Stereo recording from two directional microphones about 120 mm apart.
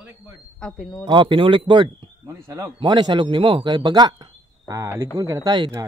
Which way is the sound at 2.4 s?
20° right (ahead or behind).